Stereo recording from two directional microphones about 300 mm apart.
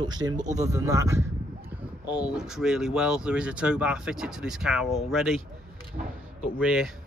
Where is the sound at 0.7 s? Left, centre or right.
Centre.